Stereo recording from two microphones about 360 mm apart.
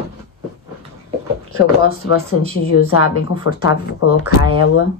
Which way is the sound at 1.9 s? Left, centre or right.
Left.